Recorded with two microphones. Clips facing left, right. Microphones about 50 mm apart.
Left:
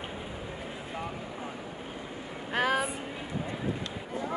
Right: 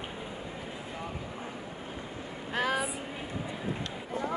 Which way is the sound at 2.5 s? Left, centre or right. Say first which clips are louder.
Left 2 dB; left.